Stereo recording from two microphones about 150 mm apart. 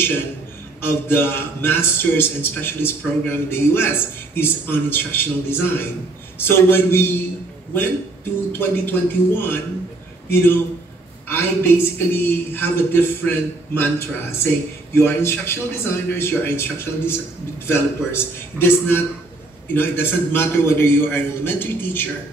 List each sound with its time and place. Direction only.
0.8 s a man's voice: 15° left (ahead or behind)
8.5 s a man's voice: 15° left (ahead or behind)